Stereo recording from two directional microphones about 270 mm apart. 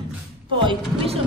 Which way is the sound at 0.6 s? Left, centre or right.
Centre.